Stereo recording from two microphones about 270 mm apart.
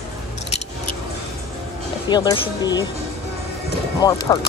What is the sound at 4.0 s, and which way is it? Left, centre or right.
Speech, centre.